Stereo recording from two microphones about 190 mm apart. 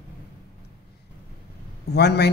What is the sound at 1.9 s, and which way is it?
Speech, 60° left (ahead or behind).